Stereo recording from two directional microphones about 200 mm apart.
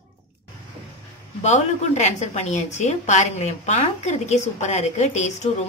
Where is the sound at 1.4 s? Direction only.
35° left (ahead or behind).